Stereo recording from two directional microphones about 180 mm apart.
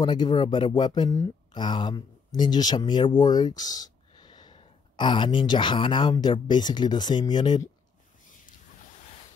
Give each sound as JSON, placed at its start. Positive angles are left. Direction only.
{"t": 0.0, "sound": "speech", "side_deg": 25}